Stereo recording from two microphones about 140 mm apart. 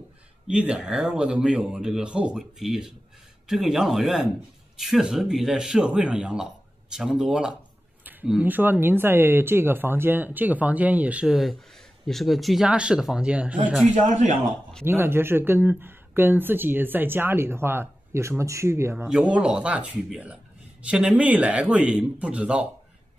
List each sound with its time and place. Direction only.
0.5 s speech: 5° right (ahead or behind)
8.0 s a sound: 15° right (ahead or behind)
8.3 s speech: 10° right (ahead or behind)
14.0 s a man's voice: 60° right (ahead or behind)
14.9 s speech: 15° right (ahead or behind)
19.0 s speech: 5° right (ahead or behind)